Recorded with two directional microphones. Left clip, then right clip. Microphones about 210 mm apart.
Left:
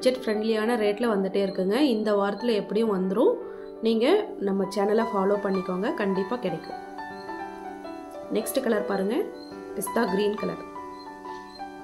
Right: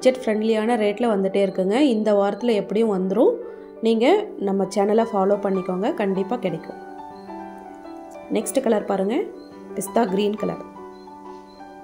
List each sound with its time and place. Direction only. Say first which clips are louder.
0.0 s a woman's voice: right 5 dB; 15° right (ahead or behind)
8.3 s a woman's voice: right 5 dB; 15° right (ahead or behind)